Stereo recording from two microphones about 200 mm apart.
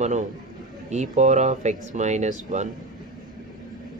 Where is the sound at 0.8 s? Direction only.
35° right (ahead or behind).